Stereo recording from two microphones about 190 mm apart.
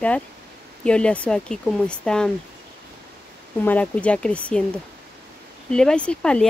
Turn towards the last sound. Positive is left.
turn(degrees=5)  # may be behind; listen again after turning